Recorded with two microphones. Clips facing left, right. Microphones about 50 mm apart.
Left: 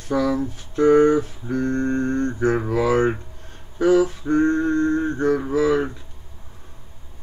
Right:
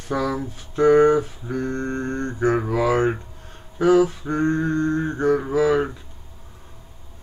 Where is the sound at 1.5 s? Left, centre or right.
Centre.